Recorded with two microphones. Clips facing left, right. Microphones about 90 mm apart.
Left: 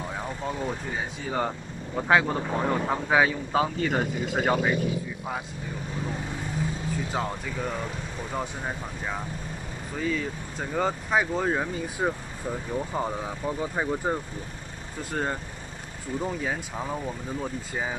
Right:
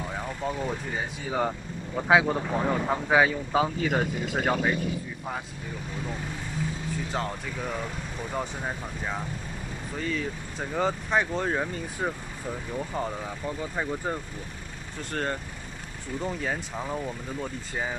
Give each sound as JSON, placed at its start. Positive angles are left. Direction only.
{"t": 0.1, "sound": "speech", "side_deg": 0}
{"t": 7.1, "sound": "speech", "side_deg": 0}
{"t": 15.1, "sound": "speech", "side_deg": 10}